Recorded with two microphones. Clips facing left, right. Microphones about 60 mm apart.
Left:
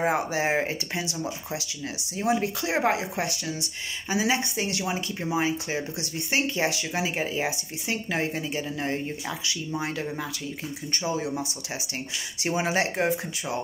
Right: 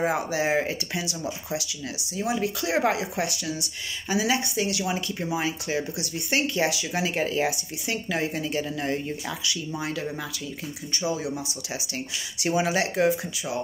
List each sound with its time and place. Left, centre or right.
0.0 s speech: left
2.1 s speech: left; by 7.4 s centre
7.4 s speech: left
8.4 s speech: centre
12.4 s speech: left